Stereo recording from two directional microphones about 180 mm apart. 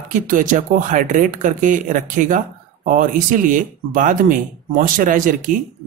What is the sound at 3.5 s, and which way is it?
Speech, 45° right (ahead or behind).